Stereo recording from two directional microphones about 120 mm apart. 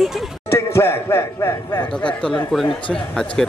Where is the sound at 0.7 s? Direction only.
20° left (ahead or behind).